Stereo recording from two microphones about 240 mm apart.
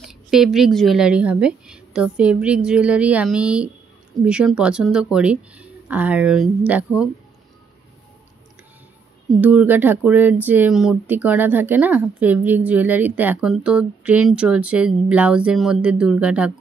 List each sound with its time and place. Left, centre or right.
0.0 s a woman's voice: centre
9.4 s speech: centre